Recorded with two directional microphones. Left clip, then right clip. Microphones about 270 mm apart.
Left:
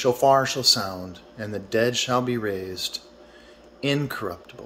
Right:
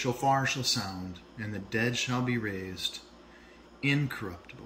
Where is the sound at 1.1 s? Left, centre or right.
Left.